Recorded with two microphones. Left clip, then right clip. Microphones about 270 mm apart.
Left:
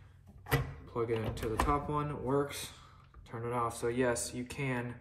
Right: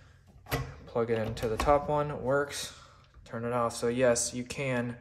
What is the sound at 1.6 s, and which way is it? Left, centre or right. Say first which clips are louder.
Speech: right 8 dB; right.